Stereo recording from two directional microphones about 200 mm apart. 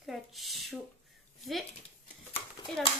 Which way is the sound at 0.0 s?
Centre (ahead or behind).